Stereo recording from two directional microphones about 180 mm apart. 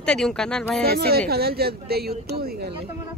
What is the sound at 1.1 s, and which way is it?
A woman's voice, 60° right (ahead or behind).